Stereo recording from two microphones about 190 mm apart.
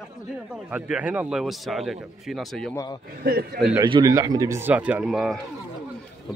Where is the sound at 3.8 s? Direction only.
20° right (ahead or behind); by 5.4 s centre (ahead or behind).